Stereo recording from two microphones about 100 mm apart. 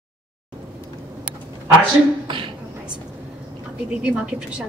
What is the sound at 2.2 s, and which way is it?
Beatboxing, 55° right (ahead or behind).